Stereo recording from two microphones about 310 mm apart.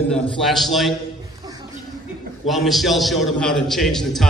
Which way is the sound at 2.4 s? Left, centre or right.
Centre.